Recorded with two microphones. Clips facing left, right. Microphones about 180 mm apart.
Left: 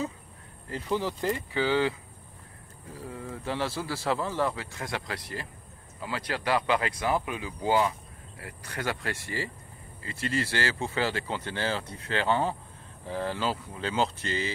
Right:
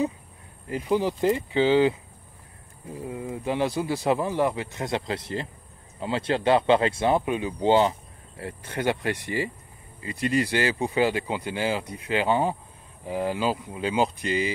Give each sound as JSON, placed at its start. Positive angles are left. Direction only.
{"t": 0.7, "sound": "speech", "side_deg": -15}